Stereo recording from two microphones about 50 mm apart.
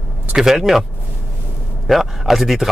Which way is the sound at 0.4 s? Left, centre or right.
Centre.